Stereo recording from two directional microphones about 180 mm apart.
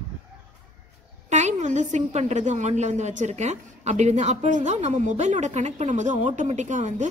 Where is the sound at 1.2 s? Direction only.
40° right (ahead or behind).